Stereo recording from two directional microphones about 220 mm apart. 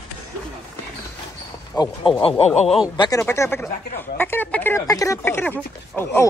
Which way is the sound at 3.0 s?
15° left (ahead or behind).